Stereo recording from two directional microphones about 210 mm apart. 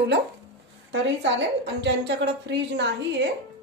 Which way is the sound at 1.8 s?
55° right (ahead or behind).